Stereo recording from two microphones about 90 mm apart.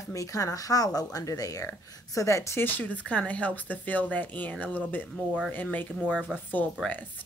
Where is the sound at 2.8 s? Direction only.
15° left (ahead or behind).